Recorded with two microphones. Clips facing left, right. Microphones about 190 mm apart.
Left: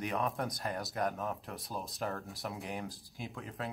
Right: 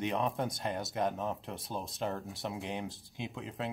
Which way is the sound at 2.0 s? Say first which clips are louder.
Right 2 dB; 25° right (ahead or behind).